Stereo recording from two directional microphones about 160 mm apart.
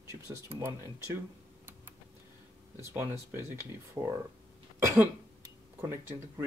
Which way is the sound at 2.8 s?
15° right (ahead or behind).